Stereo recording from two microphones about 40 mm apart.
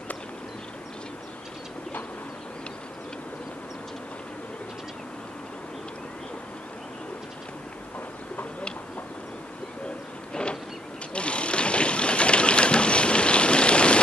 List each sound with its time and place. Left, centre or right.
10.3 s vehicle: left
11.1 s boat: left